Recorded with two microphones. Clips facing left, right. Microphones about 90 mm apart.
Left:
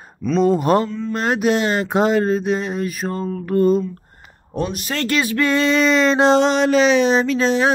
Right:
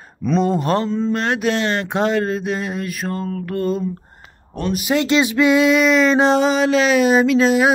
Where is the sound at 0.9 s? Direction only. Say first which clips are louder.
Right 6 dB; 25° right (ahead or behind).